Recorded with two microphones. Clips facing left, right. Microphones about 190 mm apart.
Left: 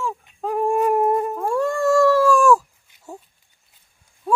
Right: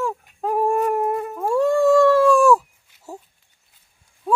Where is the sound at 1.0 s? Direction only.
35° left (ahead or behind).